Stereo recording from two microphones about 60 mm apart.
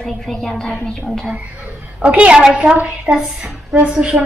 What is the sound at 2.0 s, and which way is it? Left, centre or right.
A woman's voice, right.